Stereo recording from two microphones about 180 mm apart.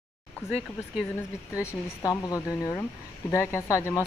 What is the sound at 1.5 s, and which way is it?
Speech, 15° left (ahead or behind).